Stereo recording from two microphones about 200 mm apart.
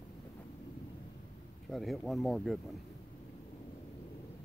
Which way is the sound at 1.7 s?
Centre (ahead or behind).